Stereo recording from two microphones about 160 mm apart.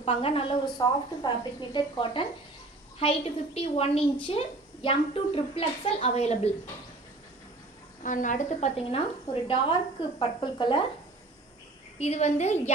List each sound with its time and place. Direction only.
0.0 s a woman's voice: 35° left (ahead or behind)
8.0 s a woman's voice: 55° left (ahead or behind); by 10.8 s 30° left (ahead or behind)
12.0 s a woman's voice: 45° left (ahead or behind)